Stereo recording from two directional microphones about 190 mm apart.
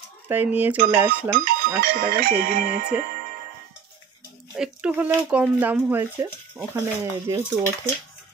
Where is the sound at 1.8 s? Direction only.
50° right (ahead or behind).